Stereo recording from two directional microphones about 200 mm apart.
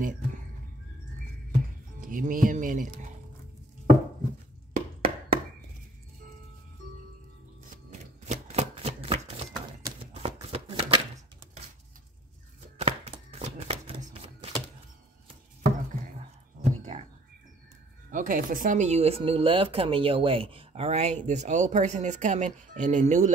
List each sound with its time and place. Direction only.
0.0 s a sound: 40° right (ahead or behind)
1.5 s music: 40° right (ahead or behind)
4.7 s a sound: 45° right (ahead or behind)
7.9 s shuffling cards: 35° right (ahead or behind)
12.7 s shuffling cards: 35° right (ahead or behind)
18.1 s speech: 40° right (ahead or behind)